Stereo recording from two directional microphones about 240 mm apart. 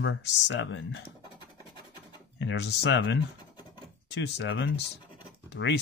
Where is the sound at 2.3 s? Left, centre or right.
Left.